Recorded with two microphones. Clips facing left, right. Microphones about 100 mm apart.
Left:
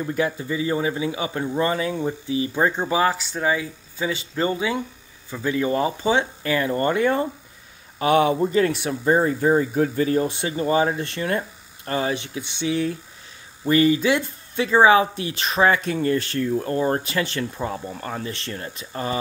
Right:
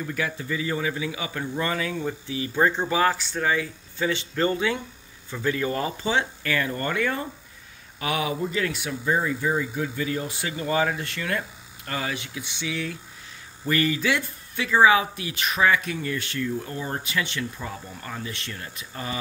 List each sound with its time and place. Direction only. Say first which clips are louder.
0.0 s speech: left 5 dB; 25° left (ahead or behind)
2.5 s speech: right 1 dB; 15° left (ahead or behind); by 10.2 s 40° left (ahead or behind)
10.2 s speech: left 6 dB; 25° left (ahead or behind)